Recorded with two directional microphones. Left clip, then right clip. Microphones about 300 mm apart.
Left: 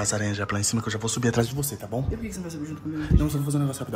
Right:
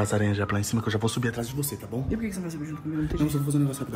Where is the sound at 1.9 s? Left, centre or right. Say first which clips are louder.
Left 4 dB; centre.